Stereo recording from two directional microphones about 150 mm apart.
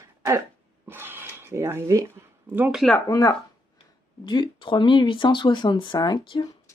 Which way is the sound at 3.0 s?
25° left (ahead or behind).